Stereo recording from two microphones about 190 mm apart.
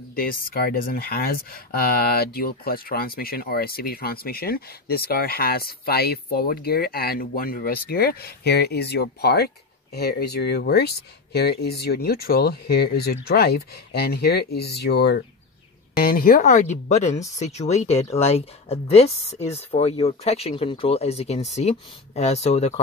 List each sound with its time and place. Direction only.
0.1 s speech: 50° left (ahead or behind)